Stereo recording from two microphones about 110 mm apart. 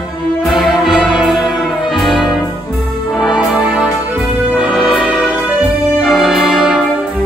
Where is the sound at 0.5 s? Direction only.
Centre (ahead or behind).